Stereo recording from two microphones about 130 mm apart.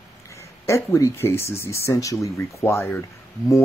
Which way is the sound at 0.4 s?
20° left (ahead or behind).